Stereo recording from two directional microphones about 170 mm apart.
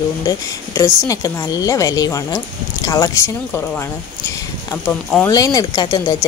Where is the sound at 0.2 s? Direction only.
20° left (ahead or behind).